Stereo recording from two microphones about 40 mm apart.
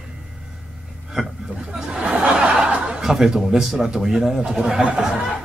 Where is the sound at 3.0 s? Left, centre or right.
Centre.